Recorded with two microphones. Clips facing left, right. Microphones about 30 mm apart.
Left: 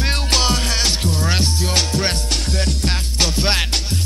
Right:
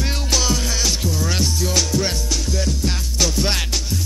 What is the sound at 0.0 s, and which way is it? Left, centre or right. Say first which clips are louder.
Music: left 3 dB; left.